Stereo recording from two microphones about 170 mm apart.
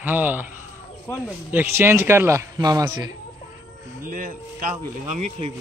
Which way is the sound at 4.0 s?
55° right (ahead or behind).